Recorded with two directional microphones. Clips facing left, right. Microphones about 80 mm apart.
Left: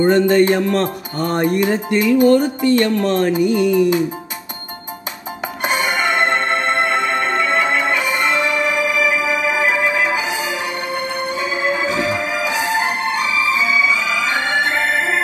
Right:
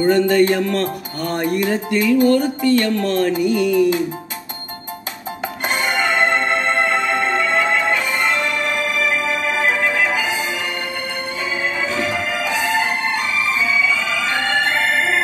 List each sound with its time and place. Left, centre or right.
0.0 s music: left
5.6 s music: centre